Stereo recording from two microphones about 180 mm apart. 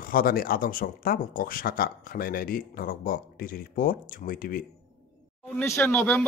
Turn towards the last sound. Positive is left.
turn(degrees=10)  # may be behind; listen again after turning